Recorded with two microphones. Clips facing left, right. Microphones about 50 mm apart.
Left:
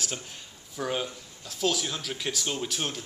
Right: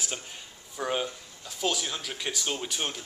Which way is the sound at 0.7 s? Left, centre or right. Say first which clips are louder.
Right 1 dB; centre.